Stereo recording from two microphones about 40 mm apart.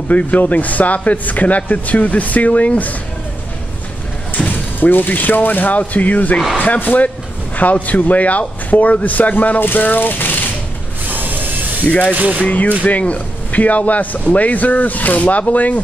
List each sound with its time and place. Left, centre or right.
0.1 s speech: left
4.5 s speech: left
11.1 s printer: right
12.1 s speech: right
12.4 s speech: left